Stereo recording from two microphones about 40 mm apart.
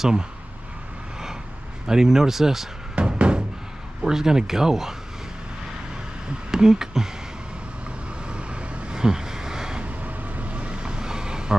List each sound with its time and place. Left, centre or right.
0.0 s speech: centre
1.9 s speech: centre
3.0 s a sound: right
4.0 s speech: centre
6.5 s speech: centre
8.3 s vehicle: right
9.8 s vehicle: right; by 11.5 s centre